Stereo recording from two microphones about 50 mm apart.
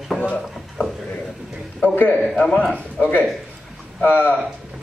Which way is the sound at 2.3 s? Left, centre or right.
Left.